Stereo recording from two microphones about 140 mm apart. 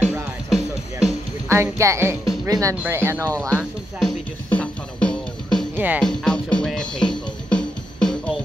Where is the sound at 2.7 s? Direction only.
15° right (ahead or behind).